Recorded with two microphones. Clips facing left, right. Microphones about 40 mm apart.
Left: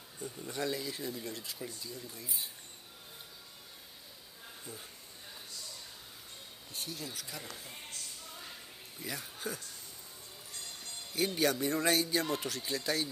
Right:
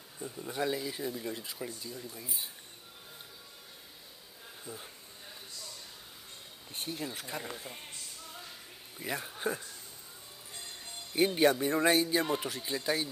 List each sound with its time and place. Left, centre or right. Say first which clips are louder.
0.2 s speech: right 3 dB; centre
4.7 s speech: right 4 dB; centre
6.7 s speech: right 4 dB; right
9.0 s speech: right 6 dB; right
10.5 s music: right 1 dB; right
11.5 s speech: right 3 dB; right